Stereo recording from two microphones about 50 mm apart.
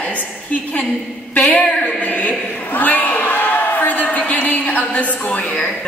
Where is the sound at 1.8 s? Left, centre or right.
Left.